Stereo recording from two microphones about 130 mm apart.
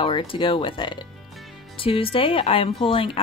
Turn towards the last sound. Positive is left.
turn(degrees=45)  # may be behind; listen again after turning